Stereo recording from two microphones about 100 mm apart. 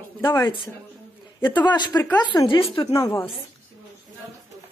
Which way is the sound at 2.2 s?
55° left (ahead or behind).